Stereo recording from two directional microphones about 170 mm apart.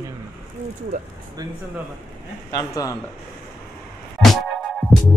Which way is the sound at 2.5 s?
20° left (ahead or behind).